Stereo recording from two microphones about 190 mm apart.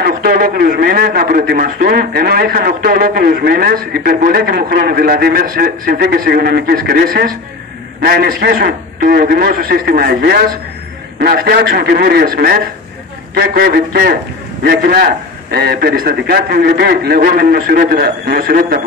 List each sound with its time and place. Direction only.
0.2 s a man's voice: 50° right (ahead or behind)